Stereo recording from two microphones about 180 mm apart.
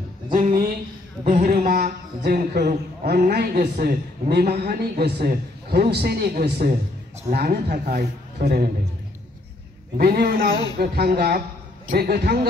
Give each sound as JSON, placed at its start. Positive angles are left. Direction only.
{"t": 0.3, "sound": "a man's voice", "side_deg": -50}
{"t": 9.9, "sound": "a man's voice", "side_deg": -60}